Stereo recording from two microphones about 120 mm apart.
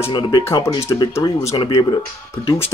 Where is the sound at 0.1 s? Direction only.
40° left (ahead or behind).